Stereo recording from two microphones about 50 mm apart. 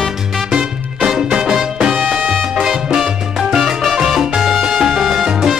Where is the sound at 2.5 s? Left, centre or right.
Centre.